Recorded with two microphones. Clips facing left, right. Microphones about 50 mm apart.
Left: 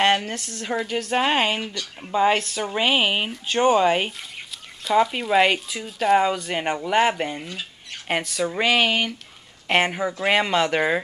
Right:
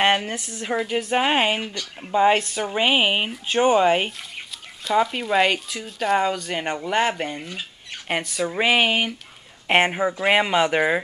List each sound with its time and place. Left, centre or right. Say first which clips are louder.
0.0 s speech: even; centre